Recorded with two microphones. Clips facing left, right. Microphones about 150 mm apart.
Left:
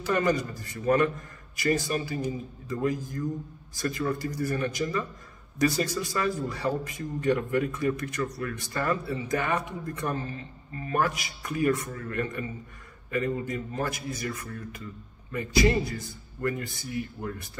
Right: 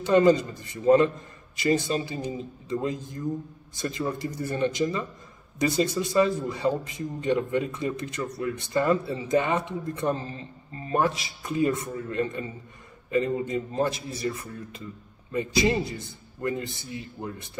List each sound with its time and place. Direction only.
0.0 s a man's voice: 20° right (ahead or behind)